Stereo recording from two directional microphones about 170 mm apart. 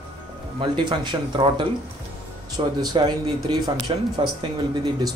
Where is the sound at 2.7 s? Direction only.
25° right (ahead or behind).